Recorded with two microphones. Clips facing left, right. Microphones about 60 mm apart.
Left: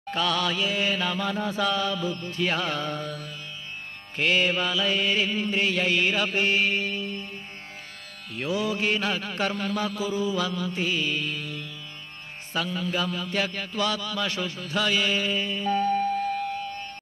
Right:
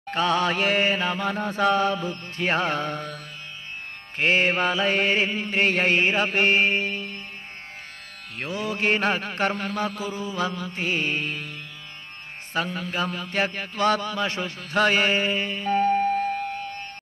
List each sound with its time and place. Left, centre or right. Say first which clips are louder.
0.1 s music: right 3 dB; right
0.6 s music: right 4 dB; right
7.0 s music: left 2 dB; right
8.4 s music: left 1 dB; right
14.7 s music: right 5 dB; right